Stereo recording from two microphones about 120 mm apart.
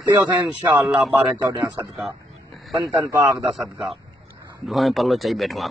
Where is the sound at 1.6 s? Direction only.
25° right (ahead or behind).